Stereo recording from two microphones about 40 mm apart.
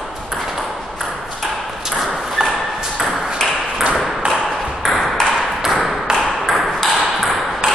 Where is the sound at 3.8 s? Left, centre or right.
Right.